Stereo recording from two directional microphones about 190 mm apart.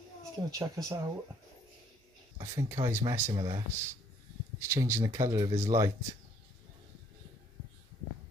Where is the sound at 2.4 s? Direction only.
15° right (ahead or behind).